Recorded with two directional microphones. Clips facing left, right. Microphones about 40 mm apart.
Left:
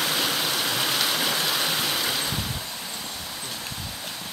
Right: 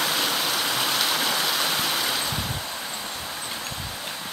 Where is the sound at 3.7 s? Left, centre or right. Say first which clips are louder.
Right 2 dB; centre.